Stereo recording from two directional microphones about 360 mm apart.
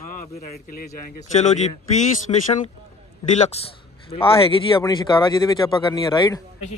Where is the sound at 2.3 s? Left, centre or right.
Centre.